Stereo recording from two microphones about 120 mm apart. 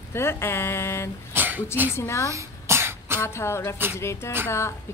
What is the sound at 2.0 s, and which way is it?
Speech, 25° left (ahead or behind).